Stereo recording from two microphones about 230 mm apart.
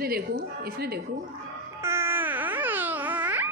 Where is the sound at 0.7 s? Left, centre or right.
Right.